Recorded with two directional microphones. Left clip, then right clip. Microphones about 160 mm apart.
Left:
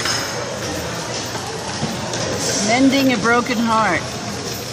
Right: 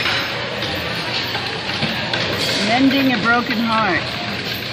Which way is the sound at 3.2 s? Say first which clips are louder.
Even; 25° left (ahead or behind).